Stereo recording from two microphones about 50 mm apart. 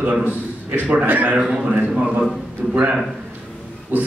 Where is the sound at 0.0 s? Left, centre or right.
Right.